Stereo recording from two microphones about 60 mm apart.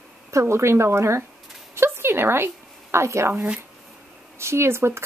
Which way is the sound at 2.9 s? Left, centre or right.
Right.